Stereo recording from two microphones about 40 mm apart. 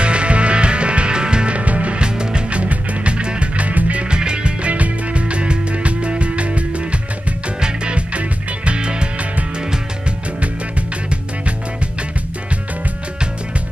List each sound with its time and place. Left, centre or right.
0.0 s music: right
2.0 s music: right
2.6 s music: right
3.5 s music: right
4.1 s music: right